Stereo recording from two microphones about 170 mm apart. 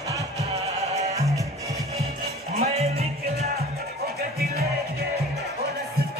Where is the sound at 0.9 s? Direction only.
40° right (ahead or behind).